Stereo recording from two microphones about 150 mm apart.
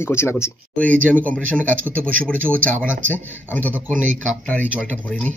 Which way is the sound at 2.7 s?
60° right (ahead or behind).